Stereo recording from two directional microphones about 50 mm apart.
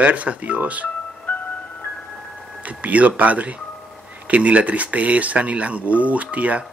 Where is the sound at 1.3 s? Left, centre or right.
Left.